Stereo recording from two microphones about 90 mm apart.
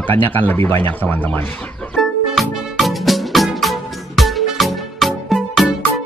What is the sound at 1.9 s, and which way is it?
Music, centre (ahead or behind).